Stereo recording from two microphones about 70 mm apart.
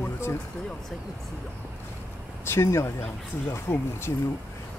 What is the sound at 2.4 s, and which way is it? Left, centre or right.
Speech, left.